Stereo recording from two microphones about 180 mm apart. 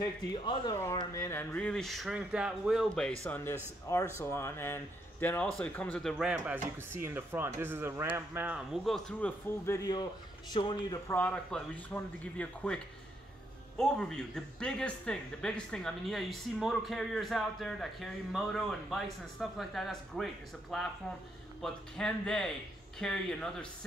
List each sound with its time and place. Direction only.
0.0 s speech: 20° left (ahead or behind); by 3.1 s 5° right (ahead or behind)
3.3 s speech: 10° left (ahead or behind)
9.7 s speech: 20° left (ahead or behind)
11.1 s speech: 10° left (ahead or behind)